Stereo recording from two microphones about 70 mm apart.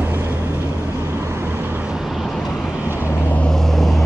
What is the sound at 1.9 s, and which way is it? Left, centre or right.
Vehicle, centre.